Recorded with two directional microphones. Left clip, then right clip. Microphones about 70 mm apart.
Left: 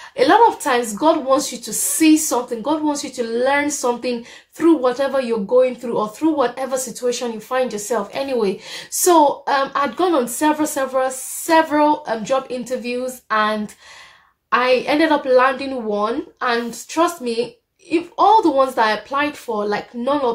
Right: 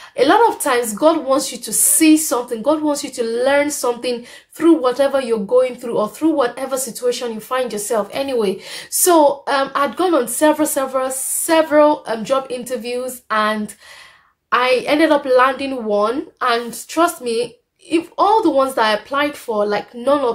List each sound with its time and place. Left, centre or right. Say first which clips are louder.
0.1 s speech: even; right
12.1 s speech: right 1 dB; right